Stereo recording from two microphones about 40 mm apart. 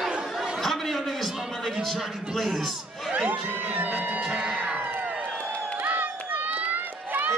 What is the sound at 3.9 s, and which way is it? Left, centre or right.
Music, right.